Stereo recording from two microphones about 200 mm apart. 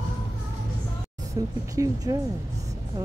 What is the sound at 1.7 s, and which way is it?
Speech, 15° right (ahead or behind).